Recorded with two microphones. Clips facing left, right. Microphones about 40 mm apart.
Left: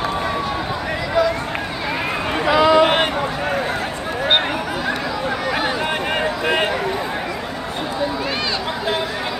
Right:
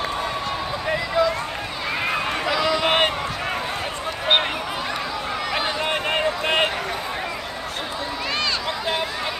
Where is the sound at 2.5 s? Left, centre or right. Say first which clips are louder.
Left 10 dB; left.